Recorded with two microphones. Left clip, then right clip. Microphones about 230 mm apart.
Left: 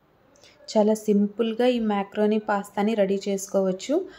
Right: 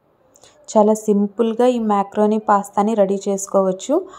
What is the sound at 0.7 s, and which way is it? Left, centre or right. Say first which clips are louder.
A woman's voice: right 7 dB; centre.